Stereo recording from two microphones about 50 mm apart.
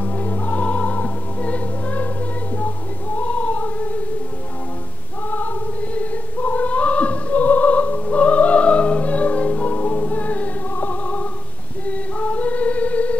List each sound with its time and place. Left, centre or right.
0.0 s music: left
3.2 s female singing: left
5.9 s music: left
11.9 s female singing: left